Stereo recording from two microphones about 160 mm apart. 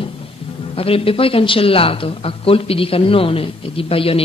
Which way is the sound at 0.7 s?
35° left (ahead or behind).